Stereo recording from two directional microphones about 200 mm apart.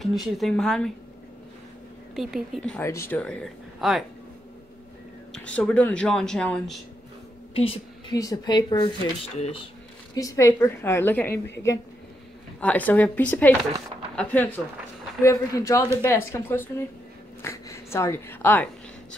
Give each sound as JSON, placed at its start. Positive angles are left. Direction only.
{"t": 0.0, "sound": "a woman's voice", "side_deg": 0}
{"t": 2.1, "sound": "a woman's voice", "side_deg": 0}
{"t": 5.3, "sound": "a woman's voice", "side_deg": 5}
{"t": 7.5, "sound": "a woman's voice", "side_deg": 30}
{"t": 10.1, "sound": "a woman's voice", "side_deg": 15}
{"t": 12.5, "sound": "a woman's voice", "side_deg": 5}